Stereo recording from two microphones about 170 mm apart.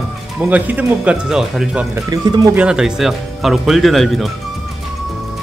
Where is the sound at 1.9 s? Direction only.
20° right (ahead or behind).